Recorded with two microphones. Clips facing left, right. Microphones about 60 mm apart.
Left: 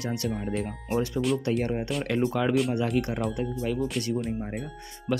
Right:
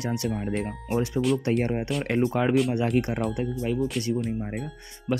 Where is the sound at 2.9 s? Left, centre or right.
Right.